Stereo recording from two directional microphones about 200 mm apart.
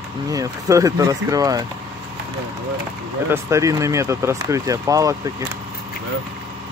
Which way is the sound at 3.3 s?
15° right (ahead or behind).